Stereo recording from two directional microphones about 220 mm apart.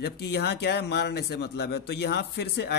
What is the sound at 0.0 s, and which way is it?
Speech, 50° left (ahead or behind).